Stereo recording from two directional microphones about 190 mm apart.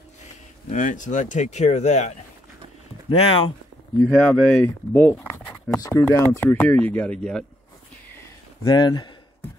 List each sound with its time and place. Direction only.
0.7 s speech: 40° left (ahead or behind)
4.1 s speech: 5° left (ahead or behind)
5.8 s speech: 20° left (ahead or behind)
8.2 s a sound: 20° left (ahead or behind)